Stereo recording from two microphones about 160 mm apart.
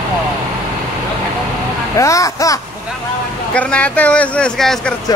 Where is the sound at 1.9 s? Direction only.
20° left (ahead or behind).